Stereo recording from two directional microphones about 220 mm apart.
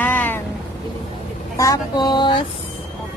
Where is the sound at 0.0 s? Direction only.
10° left (ahead or behind).